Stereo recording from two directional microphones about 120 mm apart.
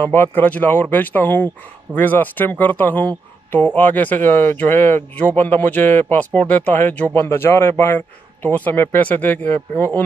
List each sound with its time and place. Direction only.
0.0 s speech: 20° left (ahead or behind)